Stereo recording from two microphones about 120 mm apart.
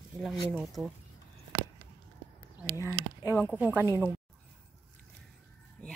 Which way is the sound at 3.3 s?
15° right (ahead or behind).